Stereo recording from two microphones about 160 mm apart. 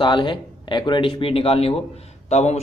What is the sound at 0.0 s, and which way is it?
Speech, 30° left (ahead or behind).